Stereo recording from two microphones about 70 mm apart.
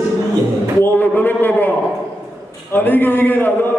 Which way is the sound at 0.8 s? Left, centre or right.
Left.